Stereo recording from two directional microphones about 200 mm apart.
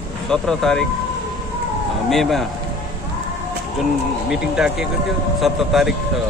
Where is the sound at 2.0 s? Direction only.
Centre (ahead or behind).